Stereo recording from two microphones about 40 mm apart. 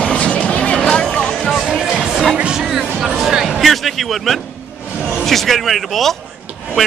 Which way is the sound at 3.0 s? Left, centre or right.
Centre.